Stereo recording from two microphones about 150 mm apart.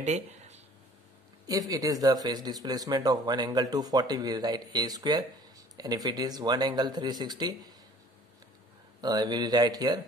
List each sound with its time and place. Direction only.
0.0 s a sound: 50° right (ahead or behind)
1.5 s speech: 25° right (ahead or behind)
9.0 s speech: 25° right (ahead or behind)